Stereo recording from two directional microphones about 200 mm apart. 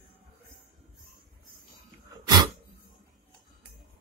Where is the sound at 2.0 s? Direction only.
20° right (ahead or behind).